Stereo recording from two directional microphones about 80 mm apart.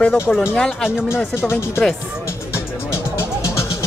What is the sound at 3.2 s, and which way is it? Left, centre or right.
Music, left.